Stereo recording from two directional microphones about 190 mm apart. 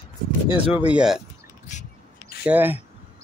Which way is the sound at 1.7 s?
40° left (ahead or behind).